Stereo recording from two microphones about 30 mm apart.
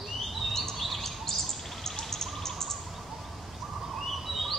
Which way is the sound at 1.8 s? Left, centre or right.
Centre.